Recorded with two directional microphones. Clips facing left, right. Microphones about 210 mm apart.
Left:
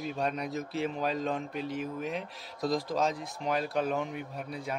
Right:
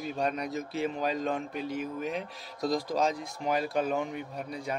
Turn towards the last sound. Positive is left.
turn(degrees=0)  # may be behind; listen again after turning